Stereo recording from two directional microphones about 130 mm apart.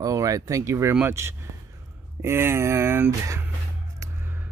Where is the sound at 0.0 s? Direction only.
25° right (ahead or behind).